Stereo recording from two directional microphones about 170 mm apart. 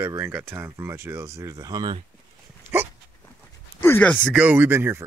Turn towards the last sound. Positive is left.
turn(degrees=-15)  # may be behind; listen again after turning